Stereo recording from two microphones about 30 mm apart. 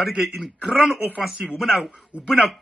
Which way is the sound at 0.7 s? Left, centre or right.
Centre.